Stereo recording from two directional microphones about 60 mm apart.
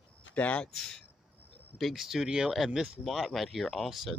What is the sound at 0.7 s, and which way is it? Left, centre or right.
Speech, centre.